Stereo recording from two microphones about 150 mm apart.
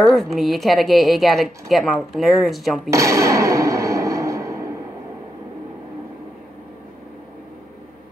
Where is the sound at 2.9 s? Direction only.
20° right (ahead or behind).